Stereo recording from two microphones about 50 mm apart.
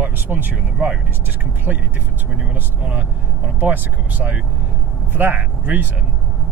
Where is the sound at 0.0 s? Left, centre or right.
Right.